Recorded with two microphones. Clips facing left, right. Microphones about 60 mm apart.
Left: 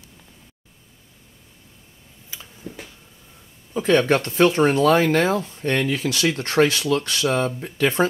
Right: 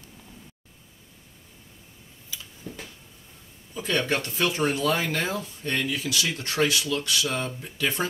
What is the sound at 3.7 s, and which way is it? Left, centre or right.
Speech, left.